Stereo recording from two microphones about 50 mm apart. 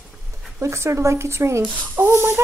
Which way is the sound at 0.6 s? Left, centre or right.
Right.